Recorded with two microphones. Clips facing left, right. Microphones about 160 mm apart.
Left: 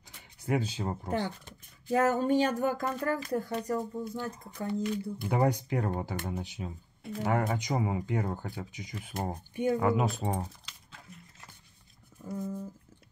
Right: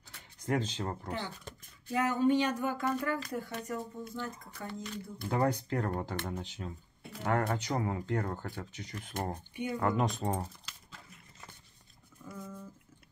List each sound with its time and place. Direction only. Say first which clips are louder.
0.4 s speech: left 2 dB; 10° left (ahead or behind)
1.9 s speech: left 2 dB; 45° left (ahead or behind)
4.2 s speech: left 4 dB; 15° left (ahead or behind); by 11.0 s centre (ahead or behind)
12.3 s speech: left 9 dB; 35° left (ahead or behind)